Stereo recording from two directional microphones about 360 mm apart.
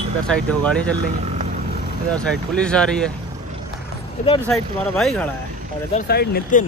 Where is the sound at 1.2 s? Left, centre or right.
Right.